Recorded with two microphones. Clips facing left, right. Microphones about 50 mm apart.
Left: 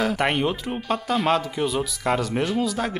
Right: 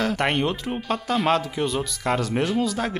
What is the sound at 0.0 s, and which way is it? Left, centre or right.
Speech, centre.